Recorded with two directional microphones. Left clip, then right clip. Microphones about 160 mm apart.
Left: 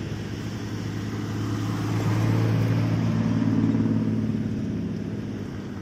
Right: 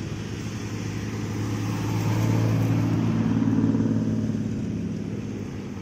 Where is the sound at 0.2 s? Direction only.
5° left (ahead or behind); by 3.8 s 70° left (ahead or behind).